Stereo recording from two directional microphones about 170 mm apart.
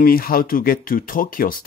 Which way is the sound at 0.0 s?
60° left (ahead or behind).